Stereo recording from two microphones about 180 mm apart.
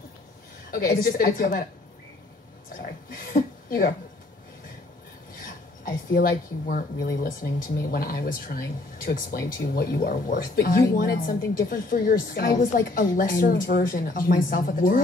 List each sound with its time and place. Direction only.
0.7 s speech: 50° left (ahead or behind)
3.3 s a woman's voice: 50° left (ahead or behind)
5.9 s speech: 50° left (ahead or behind)